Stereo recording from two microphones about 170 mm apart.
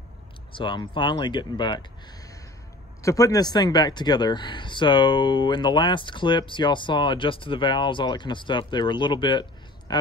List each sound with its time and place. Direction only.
0.5 s speech: 30° left (ahead or behind)